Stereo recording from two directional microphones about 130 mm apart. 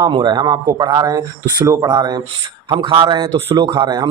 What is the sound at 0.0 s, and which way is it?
Speech, 35° right (ahead or behind).